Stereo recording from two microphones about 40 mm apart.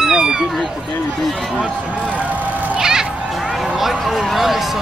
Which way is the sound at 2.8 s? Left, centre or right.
Centre.